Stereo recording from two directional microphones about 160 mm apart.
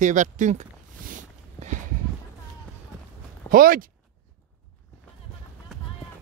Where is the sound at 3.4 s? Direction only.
60° right (ahead or behind).